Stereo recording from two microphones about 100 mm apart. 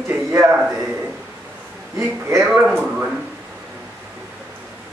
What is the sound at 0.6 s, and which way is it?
Speech, centre (ahead or behind).